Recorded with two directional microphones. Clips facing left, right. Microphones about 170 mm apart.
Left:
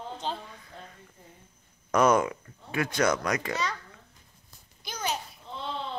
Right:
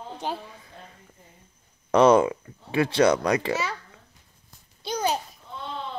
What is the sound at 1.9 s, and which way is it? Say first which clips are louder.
A child's voice: right 5 dB; 30° right (ahead or behind).